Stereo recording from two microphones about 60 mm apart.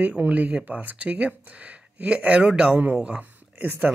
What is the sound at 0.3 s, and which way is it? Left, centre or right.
Speech, right.